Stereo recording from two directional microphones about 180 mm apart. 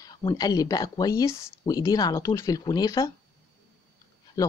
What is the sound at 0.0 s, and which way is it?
Speech, 20° left (ahead or behind).